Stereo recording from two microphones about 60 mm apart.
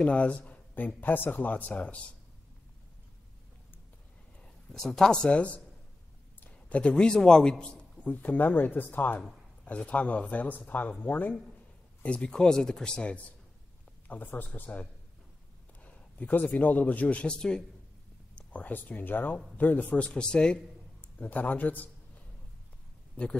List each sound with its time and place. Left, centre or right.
0.0 s speech: left
4.7 s speech: centre
6.5 s a man's voice: centre
8.1 s speech: left
12.0 s speech: centre
14.0 s a man's voice: left; by 17.6 s centre
18.3 s speech: left
21.0 s a man's voice: left